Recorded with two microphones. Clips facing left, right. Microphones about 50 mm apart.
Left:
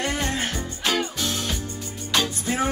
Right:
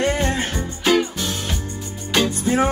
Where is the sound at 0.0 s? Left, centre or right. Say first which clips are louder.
Right 5 dB; right.